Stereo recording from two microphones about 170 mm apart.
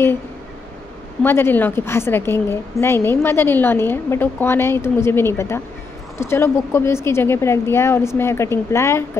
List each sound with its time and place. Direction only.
1.2 s a woman's voice: 15° left (ahead or behind)